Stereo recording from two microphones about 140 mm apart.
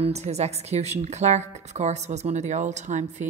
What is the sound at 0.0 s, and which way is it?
A woman's voice, 50° right (ahead or behind).